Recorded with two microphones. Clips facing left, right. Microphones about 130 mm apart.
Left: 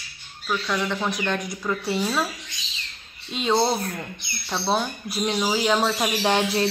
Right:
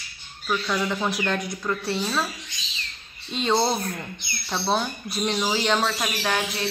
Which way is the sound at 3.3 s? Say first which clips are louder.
Left 1 dB; centre (ahead or behind).